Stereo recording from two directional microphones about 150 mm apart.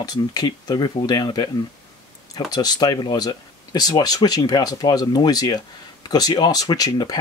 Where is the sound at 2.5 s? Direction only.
25° left (ahead or behind).